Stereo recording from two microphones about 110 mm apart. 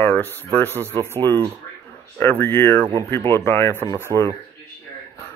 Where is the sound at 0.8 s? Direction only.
20° right (ahead or behind).